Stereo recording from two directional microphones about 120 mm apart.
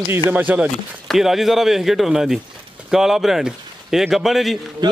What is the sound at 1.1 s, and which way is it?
A man's voice, centre (ahead or behind).